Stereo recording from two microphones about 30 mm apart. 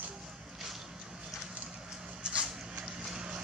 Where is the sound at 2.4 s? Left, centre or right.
Centre.